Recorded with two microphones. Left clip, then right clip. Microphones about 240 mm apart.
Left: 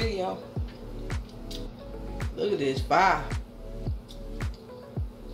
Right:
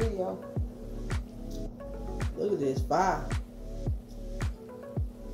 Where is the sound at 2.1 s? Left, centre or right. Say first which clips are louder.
Left 2 dB; centre.